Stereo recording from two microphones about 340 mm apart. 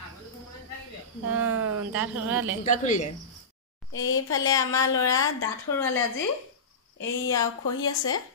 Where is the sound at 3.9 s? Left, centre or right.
Left.